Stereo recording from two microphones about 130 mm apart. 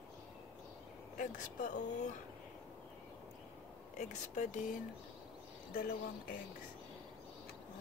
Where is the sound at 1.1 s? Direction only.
75° left (ahead or behind).